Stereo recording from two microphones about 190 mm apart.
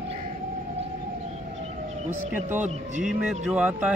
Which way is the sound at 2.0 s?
10° right (ahead or behind).